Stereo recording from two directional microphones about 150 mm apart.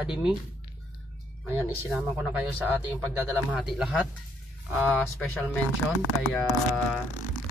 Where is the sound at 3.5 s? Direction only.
5° right (ahead or behind).